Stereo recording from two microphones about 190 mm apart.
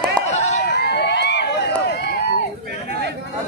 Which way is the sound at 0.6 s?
60° left (ahead or behind).